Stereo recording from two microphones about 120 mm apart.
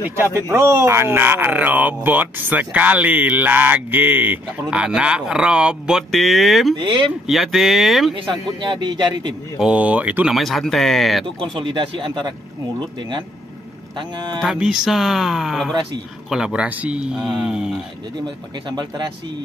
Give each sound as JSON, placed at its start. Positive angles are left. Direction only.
{"t": 0.2, "sound": "speech", "side_deg": -25}
{"t": 6.8, "sound": "speech", "side_deg": -40}
{"t": 7.2, "sound": "speech", "side_deg": 0}
{"t": 8.1, "sound": "speech", "side_deg": -40}
{"t": 9.6, "sound": "speech", "side_deg": -10}
{"t": 10.3, "sound": "speech", "side_deg": 0}
{"t": 11.5, "sound": "speech", "side_deg": -45}
{"t": 13.9, "sound": "speech", "side_deg": -40}
{"t": 14.4, "sound": "speech", "side_deg": -5}
{"t": 18.2, "sound": "speech", "side_deg": -40}